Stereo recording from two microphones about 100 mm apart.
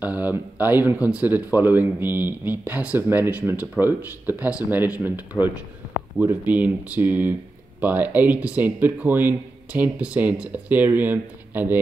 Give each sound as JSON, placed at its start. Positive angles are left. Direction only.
{"t": 0.0, "sound": "speech", "side_deg": -15}